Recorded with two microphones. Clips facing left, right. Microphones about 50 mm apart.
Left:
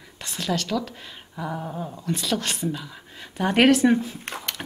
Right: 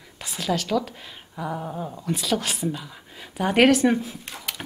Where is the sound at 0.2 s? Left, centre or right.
Centre.